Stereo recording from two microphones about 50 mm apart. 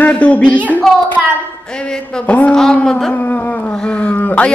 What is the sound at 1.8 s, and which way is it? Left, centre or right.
A woman's voice, centre.